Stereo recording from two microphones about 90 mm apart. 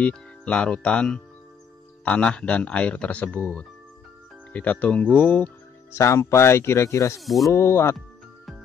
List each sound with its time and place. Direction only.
0.0 s speech: 10° left (ahead or behind)
5.9 s speech: 30° left (ahead or behind)
7.2 s speech: centre (ahead or behind)
7.4 s speech: 30° left (ahead or behind)